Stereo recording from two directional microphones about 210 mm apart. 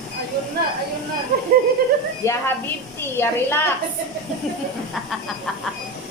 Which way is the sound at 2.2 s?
15° left (ahead or behind).